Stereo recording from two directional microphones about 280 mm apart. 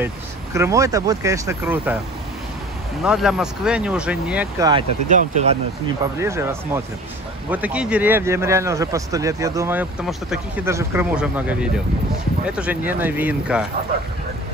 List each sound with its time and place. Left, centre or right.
0.0 s speech: centre
3.0 s speech: centre
5.1 s speech: right
6.1 s speech: centre